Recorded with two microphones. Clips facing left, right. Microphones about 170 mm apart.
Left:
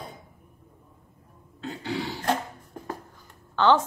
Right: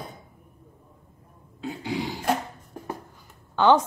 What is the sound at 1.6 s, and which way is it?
Speech, 15° right (ahead or behind).